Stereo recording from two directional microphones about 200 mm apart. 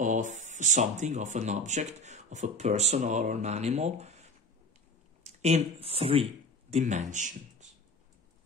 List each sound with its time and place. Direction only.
0.0 s speech: 40° right (ahead or behind)